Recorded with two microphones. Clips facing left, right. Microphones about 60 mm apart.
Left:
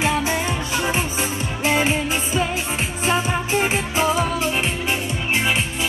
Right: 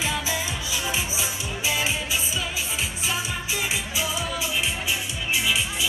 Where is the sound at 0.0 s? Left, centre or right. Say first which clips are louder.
Left 7 dB; left.